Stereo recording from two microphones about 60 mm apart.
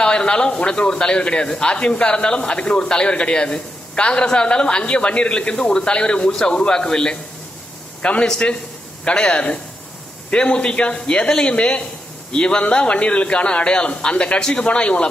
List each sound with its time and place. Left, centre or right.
0.0 s a man's voice: centre